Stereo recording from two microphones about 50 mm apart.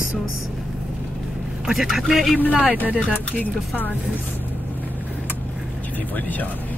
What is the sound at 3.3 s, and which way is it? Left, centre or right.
Speech, left.